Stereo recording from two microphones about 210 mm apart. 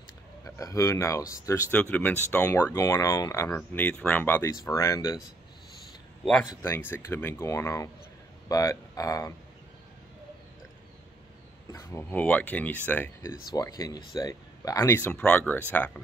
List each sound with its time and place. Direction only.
0.6 s speech: 15° left (ahead or behind)
6.5 s speech: 10° left (ahead or behind)
11.7 s speech: 10° left (ahead or behind)